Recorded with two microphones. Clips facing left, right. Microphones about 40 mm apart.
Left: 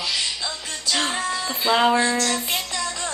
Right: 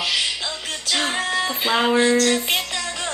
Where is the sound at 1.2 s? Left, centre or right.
Right.